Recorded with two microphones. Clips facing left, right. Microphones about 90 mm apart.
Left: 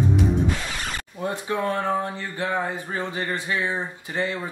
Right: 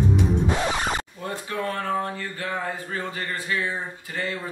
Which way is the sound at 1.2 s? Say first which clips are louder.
Left 4 dB; 20° left (ahead or behind).